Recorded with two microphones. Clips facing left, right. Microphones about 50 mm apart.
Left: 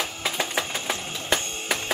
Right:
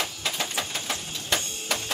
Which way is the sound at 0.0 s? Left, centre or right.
Centre.